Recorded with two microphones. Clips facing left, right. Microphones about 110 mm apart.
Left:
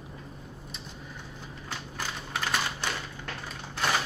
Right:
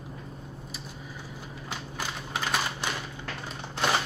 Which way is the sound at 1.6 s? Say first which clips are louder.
Right 1 dB; 5° right (ahead or behind).